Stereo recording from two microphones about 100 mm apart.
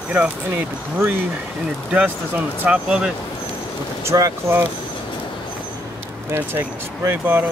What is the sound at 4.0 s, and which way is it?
Speech, 30° right (ahead or behind).